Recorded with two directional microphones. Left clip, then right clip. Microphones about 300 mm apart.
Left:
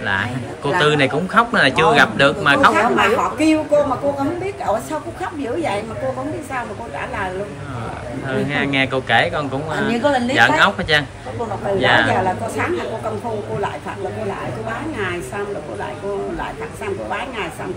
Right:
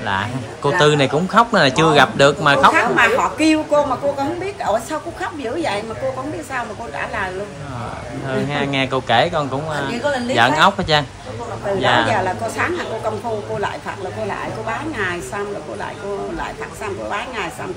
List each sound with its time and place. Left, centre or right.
0.0 s speech: centre
5.2 s speech: centre
8.3 s speech: centre
10.0 s a woman's voice: left
10.3 s speech: centre
15.0 s speech: centre
16.8 s speech: centre